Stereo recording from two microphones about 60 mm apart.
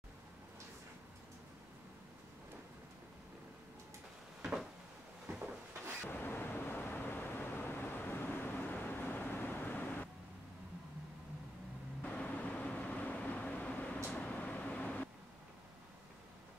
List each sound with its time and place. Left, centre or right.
4.4 s a sound: centre
6.0 s vehicle: left
12.0 s vehicle: left